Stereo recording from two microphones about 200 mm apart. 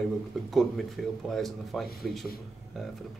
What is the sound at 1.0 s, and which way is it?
Speech, centre (ahead or behind).